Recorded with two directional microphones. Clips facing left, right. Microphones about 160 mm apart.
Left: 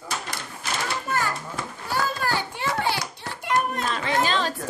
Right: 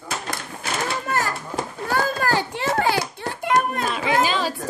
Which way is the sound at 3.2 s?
55° right (ahead or behind).